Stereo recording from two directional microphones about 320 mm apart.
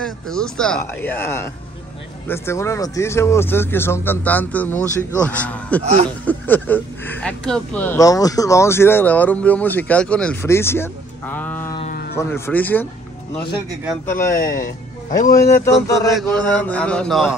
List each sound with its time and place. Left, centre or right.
0.0 s speech: centre
11.8 s a sound: left
12.2 s speech: centre
14.5 s speech: left
15.3 s speech: centre